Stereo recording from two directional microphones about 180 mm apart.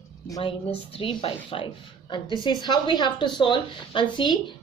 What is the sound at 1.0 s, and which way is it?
Speech, 30° left (ahead or behind).